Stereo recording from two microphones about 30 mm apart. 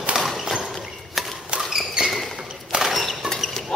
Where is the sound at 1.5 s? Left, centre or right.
Right.